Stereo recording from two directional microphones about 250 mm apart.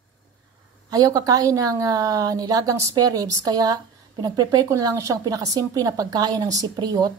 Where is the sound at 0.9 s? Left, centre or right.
Centre.